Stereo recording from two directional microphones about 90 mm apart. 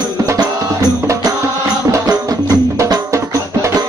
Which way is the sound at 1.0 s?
35° right (ahead or behind).